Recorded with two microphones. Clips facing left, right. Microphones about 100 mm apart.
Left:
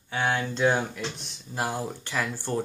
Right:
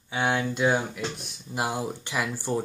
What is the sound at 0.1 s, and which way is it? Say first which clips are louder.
Speech: right 1 dB; 15° right (ahead or behind).